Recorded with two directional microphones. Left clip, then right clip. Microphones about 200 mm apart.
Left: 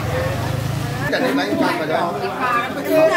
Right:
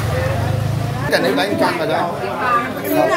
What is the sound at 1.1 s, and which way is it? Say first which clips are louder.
Speech: right 4 dB; 55° right (ahead or behind).